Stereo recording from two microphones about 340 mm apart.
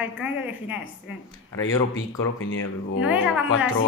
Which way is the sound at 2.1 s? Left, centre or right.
Left.